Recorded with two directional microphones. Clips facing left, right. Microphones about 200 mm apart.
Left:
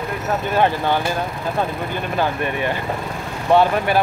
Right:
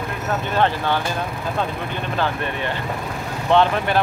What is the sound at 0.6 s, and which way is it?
Speech, 15° left (ahead or behind).